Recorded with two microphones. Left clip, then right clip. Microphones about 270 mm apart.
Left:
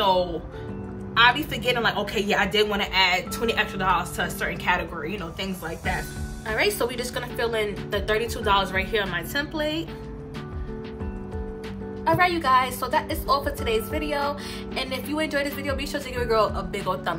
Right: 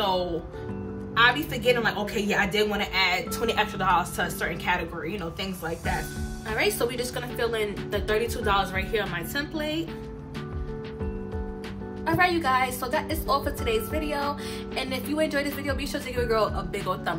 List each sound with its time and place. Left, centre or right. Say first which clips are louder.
1.1 s a woman's voice: left 2 dB; centre
12.0 s a woman's voice: left 2 dB; centre